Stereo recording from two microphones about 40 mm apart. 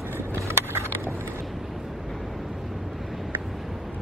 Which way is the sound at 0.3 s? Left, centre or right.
Right.